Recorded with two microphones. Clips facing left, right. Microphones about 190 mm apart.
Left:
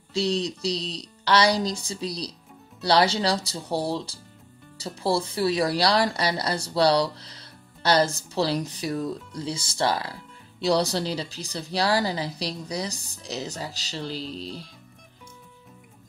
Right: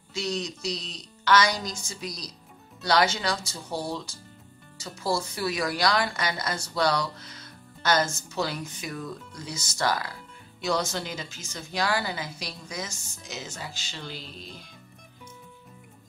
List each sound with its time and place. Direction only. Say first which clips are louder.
0.1 s speech: left 6 dB; 35° left (ahead or behind)